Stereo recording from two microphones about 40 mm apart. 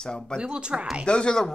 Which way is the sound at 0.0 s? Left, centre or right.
Centre.